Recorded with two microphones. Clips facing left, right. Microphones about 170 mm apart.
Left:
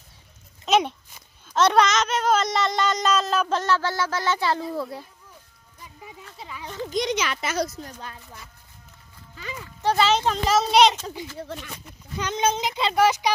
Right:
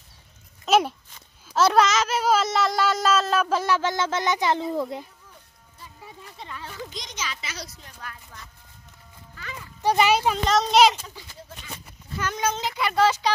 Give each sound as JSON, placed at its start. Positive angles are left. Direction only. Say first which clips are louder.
{"t": 0.7, "sound": "a sound", "louder": "right 1 dB", "side_deg": -5}
{"t": 1.5, "sound": "speech", "louder": "even", "side_deg": -5}
{"t": 6.3, "sound": "a sound", "louder": "right 1 dB", "side_deg": 5}
{"t": 6.9, "sound": "speech", "louder": "left 11 dB", "side_deg": 65}
{"t": 9.3, "sound": "horse", "louder": "left 3 dB", "side_deg": 15}
{"t": 9.8, "sound": "speech", "louder": "right 1 dB", "side_deg": -15}
{"t": 10.4, "sound": "speech", "louder": "left 1 dB", "side_deg": 5}
{"t": 11.3, "sound": "speech", "louder": "left 9 dB", "side_deg": 60}
{"t": 12.2, "sound": "speech", "louder": "left 3 dB", "side_deg": 20}